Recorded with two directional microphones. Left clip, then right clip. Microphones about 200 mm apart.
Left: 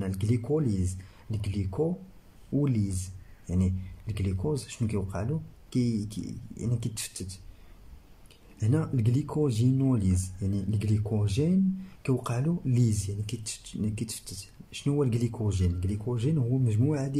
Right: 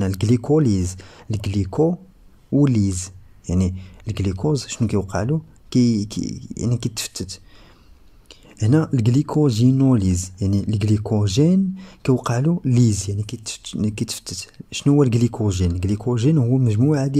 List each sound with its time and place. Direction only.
0.0 s speech: 40° right (ahead or behind)
8.5 s speech: 40° right (ahead or behind)